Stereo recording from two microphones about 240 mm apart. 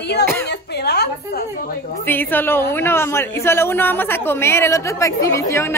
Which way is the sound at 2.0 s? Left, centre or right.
Centre.